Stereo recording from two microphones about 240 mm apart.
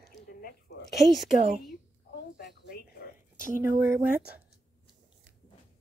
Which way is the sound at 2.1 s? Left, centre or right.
Left.